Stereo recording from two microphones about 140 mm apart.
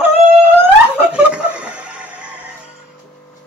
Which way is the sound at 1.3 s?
10° right (ahead or behind).